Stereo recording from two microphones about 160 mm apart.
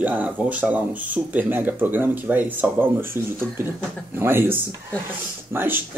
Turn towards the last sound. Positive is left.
turn(degrees=-15)  # may be behind; listen again after turning